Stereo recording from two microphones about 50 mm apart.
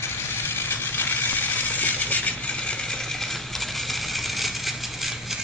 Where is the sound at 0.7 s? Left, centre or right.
Left.